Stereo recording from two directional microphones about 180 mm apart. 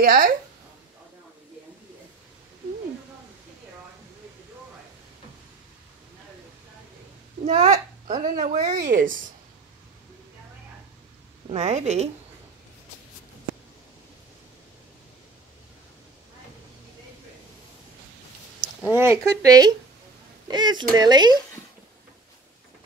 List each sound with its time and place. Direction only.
0.0 s speech: 55° right (ahead or behind)
7.4 s a child's voice: 35° right (ahead or behind)
11.5 s a woman's voice: 35° right (ahead or behind)
18.8 s speech: 10° right (ahead or behind)